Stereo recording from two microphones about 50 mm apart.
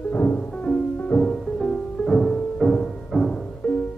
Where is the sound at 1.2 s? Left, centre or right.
Centre.